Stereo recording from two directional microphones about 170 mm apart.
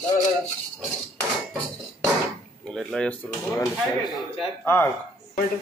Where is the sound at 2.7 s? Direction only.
5° left (ahead or behind).